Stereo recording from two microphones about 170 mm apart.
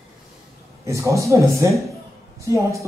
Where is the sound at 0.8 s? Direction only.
20° right (ahead or behind).